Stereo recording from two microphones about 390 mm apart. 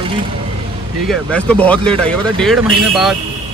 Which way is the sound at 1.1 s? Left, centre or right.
Centre.